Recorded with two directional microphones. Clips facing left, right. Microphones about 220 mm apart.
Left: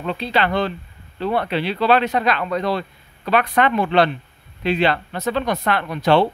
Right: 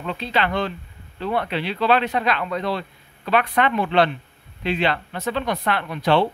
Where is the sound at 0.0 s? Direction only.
35° left (ahead or behind).